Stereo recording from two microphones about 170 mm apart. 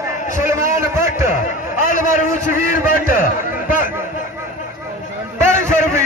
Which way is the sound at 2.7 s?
50° left (ahead or behind).